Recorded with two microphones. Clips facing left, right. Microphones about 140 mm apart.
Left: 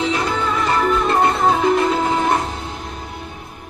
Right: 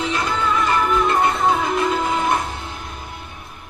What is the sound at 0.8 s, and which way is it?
Music, 30° left (ahead or behind).